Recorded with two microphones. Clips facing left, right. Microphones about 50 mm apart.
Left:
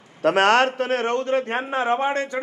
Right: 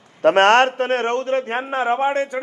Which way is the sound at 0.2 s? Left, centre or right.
Right.